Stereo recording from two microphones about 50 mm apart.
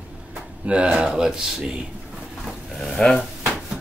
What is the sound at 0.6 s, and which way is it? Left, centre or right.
Speech, right.